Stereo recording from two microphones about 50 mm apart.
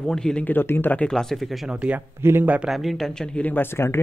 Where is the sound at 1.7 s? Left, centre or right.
Right.